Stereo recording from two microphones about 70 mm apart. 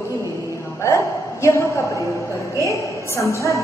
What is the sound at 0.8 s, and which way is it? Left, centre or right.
A man's voice, left.